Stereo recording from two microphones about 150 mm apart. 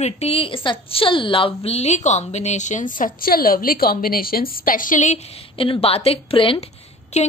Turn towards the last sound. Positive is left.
turn(degrees=45)  # may be behind; listen again after turning